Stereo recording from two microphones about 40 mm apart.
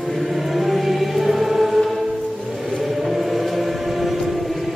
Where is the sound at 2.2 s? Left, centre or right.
Centre.